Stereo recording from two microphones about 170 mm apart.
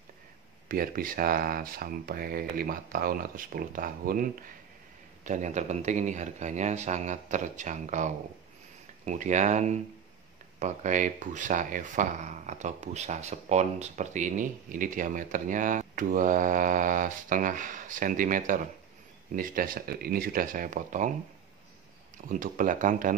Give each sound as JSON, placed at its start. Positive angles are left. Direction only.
{"t": 0.7, "sound": "speech", "side_deg": -55}
{"t": 5.2, "sound": "speech", "side_deg": -45}
{"t": 22.3, "sound": "speech", "side_deg": -50}